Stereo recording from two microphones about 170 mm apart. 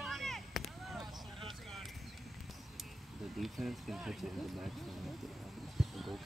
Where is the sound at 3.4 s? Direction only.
Centre (ahead or behind).